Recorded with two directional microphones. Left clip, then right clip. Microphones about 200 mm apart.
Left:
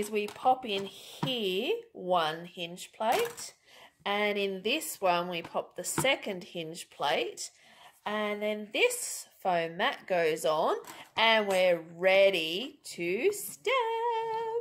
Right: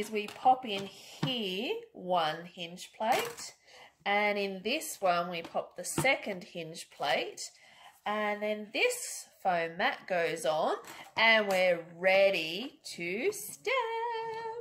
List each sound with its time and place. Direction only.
0.1 s speech: 45° left (ahead or behind)